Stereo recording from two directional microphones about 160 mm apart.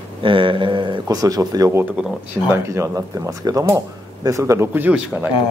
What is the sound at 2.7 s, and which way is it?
Speech, 20° right (ahead or behind).